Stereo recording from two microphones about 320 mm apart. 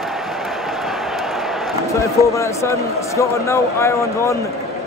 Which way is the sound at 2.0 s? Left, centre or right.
Centre.